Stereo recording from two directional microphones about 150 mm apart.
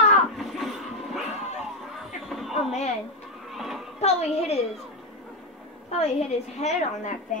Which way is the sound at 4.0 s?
45° left (ahead or behind).